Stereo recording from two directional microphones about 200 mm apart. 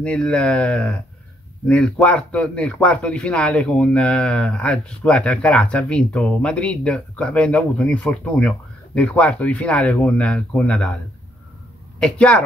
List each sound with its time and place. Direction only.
0.0 s a man's voice: 5° left (ahead or behind)
12.0 s a man's voice: 5° left (ahead or behind)